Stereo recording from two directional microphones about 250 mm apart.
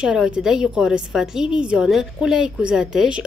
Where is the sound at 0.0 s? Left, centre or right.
Centre.